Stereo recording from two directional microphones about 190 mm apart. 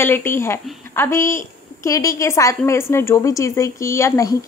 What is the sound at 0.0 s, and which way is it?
Speech, 10° left (ahead or behind).